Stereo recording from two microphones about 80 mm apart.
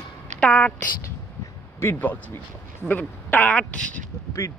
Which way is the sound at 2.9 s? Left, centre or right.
Left.